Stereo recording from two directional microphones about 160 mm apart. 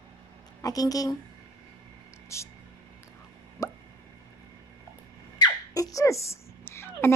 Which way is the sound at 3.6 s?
20° left (ahead or behind).